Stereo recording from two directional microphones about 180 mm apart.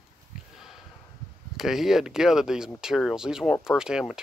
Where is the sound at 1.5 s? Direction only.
Centre (ahead or behind).